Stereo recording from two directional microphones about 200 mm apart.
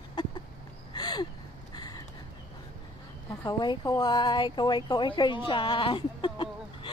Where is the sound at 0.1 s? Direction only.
20° left (ahead or behind).